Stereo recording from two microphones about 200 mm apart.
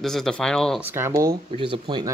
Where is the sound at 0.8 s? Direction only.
10° right (ahead or behind).